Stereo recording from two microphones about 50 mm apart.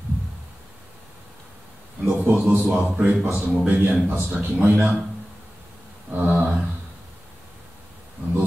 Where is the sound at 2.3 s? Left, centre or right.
Right.